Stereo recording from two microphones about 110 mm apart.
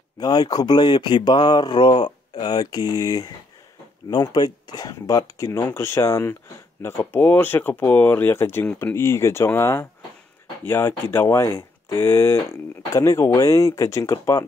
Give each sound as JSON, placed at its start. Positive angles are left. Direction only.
{"t": 0.2, "sound": "speech", "side_deg": 35}